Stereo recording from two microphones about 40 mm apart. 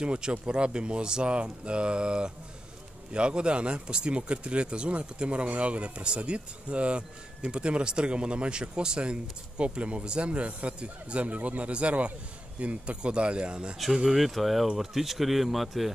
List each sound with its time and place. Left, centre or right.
0.0 s speech: right
13.9 s speech: centre